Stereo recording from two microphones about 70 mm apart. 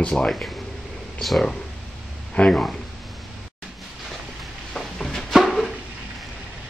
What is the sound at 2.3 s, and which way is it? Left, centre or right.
Speech, centre.